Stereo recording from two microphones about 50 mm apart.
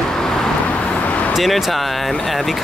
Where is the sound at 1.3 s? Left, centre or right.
Centre.